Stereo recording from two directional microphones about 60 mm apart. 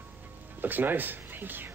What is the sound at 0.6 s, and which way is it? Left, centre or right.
Speech, right.